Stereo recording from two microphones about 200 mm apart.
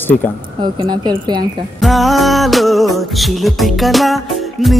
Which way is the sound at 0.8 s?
20° right (ahead or behind).